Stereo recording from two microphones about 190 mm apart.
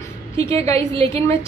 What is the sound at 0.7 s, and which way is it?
Speech, 30° right (ahead or behind).